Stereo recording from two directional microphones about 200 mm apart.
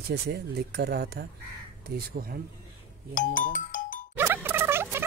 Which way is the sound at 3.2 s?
40° left (ahead or behind).